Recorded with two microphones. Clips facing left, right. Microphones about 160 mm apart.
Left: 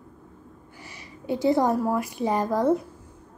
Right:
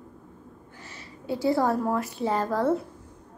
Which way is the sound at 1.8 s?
10° left (ahead or behind).